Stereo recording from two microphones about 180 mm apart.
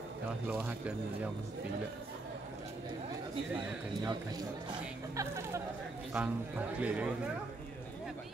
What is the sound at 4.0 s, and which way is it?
A man's voice, 20° right (ahead or behind).